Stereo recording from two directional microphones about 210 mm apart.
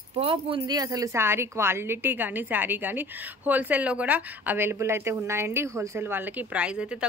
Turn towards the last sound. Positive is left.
turn(degrees=-5)  # may be behind; listen again after turning